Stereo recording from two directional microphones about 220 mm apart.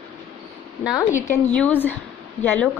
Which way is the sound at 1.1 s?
10° left (ahead or behind).